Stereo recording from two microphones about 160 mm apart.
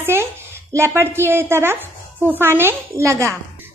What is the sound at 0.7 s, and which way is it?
A woman's voice, 15° right (ahead or behind).